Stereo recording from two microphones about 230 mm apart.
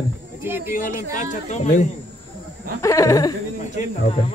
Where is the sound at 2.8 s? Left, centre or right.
Centre.